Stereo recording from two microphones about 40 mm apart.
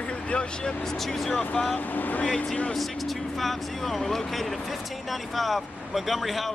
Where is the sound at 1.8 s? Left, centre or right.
Left.